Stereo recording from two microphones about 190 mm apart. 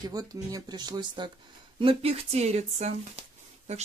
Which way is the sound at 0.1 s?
20° right (ahead or behind).